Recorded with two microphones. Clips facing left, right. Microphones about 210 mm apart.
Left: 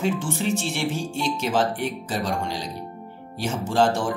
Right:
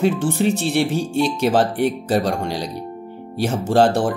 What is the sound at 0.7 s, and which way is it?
Speech, 65° right (ahead or behind).